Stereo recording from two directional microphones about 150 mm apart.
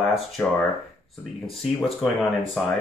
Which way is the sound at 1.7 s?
Centre (ahead or behind).